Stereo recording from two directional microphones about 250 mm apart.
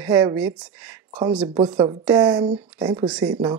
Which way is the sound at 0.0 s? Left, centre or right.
Centre.